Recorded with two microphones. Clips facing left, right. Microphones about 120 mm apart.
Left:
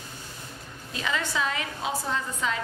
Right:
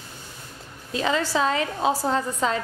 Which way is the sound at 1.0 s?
35° right (ahead or behind).